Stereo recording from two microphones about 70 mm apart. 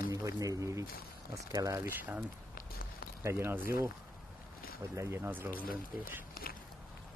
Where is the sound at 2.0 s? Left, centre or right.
Centre.